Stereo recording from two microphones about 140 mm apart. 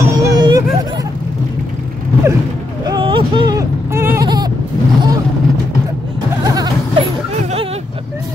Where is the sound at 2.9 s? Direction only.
40° right (ahead or behind).